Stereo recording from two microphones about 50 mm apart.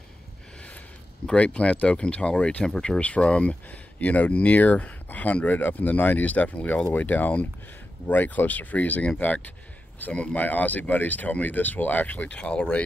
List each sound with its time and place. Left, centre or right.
1.2 s speech: left
3.0 s speech: left
12.3 s speech: left